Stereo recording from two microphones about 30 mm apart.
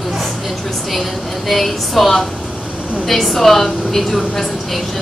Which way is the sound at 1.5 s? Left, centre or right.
Centre.